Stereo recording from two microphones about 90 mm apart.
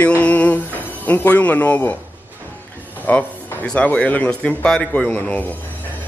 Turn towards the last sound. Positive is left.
turn(degrees=15)  # may be behind; listen again after turning